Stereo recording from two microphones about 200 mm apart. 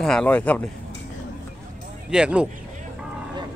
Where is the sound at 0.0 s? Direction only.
5° left (ahead or behind).